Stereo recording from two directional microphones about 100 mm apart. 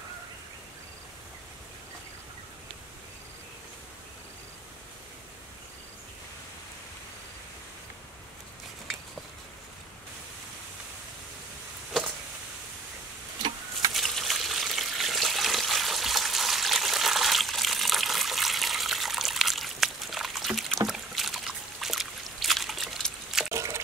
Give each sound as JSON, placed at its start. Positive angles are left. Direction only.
{"t": 13.9, "sound": "water", "side_deg": 0}
{"t": 23.5, "sound": "liquid", "side_deg": -30}